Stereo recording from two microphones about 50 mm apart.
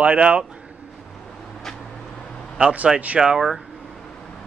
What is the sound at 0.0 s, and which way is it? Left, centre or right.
Speech, right.